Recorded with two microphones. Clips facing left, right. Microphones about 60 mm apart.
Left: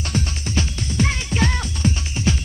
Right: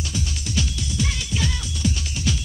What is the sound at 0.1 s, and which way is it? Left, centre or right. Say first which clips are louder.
Music: left 6 dB; left.